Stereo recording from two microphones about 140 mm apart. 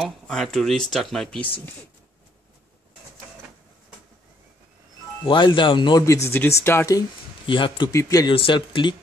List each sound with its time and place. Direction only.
0.0 s speech: centre (ahead or behind)
5.2 s speech: 35° left (ahead or behind)
6.0 s speech: 20° left (ahead or behind)
7.0 s speech: 35° left (ahead or behind)
7.9 s speech: 25° left (ahead or behind)
8.4 s speech: 35° left (ahead or behind)